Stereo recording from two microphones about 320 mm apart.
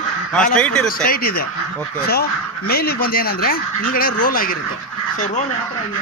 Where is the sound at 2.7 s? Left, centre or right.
Left.